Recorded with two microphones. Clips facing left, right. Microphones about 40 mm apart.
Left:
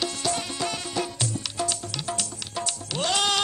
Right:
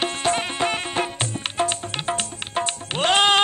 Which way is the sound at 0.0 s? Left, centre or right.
Right.